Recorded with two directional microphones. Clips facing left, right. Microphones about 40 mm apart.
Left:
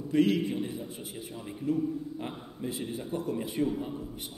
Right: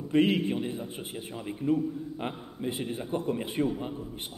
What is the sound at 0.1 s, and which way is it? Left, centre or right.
A man's voice, right.